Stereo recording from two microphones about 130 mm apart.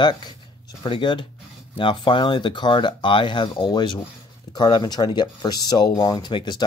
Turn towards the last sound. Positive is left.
turn(degrees=35)  # may be behind; listen again after turning